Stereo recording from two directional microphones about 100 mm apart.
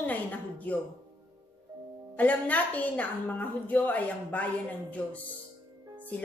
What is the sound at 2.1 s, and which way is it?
A woman's voice, 15° left (ahead or behind).